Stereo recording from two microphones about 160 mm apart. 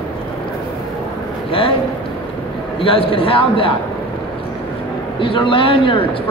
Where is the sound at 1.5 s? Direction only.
35° left (ahead or behind).